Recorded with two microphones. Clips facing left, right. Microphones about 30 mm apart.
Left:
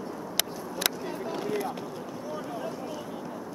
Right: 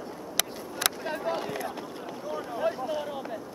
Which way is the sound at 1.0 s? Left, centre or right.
Right.